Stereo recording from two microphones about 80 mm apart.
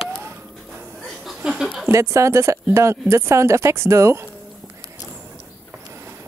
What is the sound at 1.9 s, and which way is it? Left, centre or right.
Speech, right.